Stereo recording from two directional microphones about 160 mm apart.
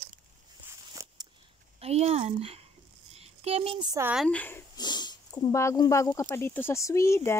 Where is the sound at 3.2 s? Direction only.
40° right (ahead or behind).